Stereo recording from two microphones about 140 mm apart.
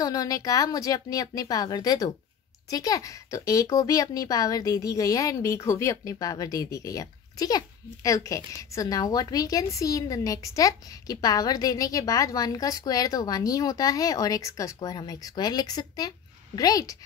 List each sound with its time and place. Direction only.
0.0 s speech: 25° left (ahead or behind)